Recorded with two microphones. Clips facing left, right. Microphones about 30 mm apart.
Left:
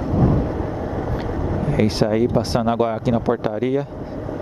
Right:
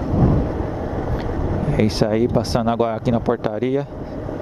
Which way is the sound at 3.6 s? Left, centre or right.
Centre.